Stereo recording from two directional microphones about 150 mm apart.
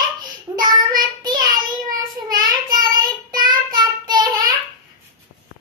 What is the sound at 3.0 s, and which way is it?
Child singing, 30° right (ahead or behind).